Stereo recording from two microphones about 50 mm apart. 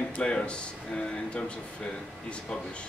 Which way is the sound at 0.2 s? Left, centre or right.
Centre.